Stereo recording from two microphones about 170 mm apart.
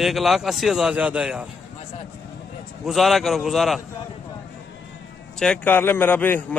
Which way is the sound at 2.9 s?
Centre (ahead or behind).